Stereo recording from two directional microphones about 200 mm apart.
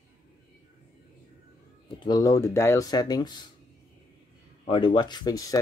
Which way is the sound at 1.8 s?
20° left (ahead or behind).